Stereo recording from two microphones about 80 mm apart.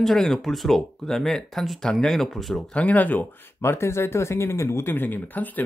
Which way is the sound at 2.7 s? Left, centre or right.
Centre.